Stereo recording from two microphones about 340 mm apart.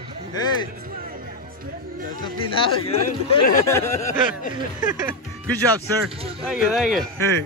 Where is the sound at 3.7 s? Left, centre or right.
Centre.